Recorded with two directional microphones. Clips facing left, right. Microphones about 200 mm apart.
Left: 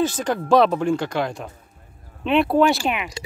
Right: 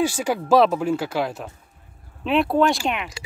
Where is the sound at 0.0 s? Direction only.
10° right (ahead or behind).